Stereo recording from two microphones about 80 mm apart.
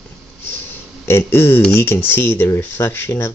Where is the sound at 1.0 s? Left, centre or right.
Left.